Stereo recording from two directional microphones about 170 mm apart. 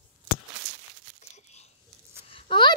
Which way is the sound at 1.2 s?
40° left (ahead or behind).